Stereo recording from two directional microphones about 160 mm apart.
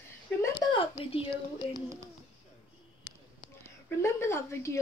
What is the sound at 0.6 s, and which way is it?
Speech, 30° left (ahead or behind).